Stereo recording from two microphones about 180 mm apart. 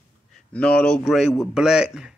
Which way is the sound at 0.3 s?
5° left (ahead or behind).